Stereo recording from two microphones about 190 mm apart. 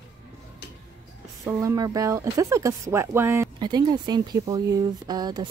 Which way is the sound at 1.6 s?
15° right (ahead or behind).